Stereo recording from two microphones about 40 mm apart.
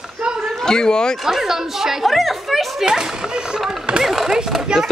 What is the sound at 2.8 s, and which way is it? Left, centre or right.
Speech, centre.